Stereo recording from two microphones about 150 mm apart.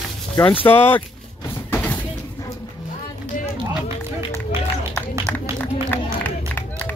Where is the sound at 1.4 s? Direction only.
10° left (ahead or behind).